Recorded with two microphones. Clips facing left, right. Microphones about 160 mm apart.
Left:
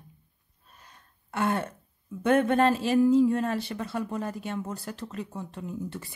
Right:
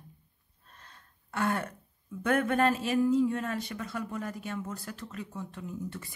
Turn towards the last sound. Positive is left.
turn(degrees=30)  # may be behind; listen again after turning